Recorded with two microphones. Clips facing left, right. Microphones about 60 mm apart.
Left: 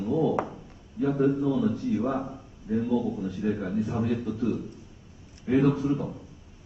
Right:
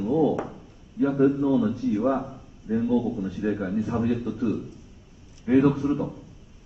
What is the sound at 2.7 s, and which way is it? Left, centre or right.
A man's voice, centre.